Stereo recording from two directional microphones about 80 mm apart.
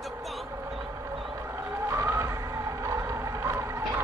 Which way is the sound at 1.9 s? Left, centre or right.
Right.